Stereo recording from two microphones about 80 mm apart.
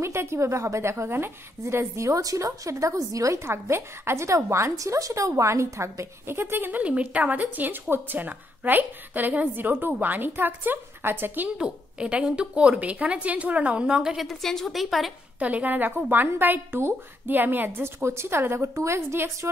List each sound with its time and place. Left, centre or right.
0.0 s a woman's voice: right
11.5 s a woman's voice: centre
14.2 s a woman's voice: centre
15.3 s a woman's voice: centre